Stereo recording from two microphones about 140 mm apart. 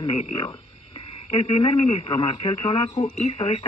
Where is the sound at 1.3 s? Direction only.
40° left (ahead or behind).